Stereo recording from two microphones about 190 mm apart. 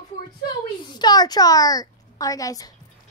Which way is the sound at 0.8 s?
20° left (ahead or behind).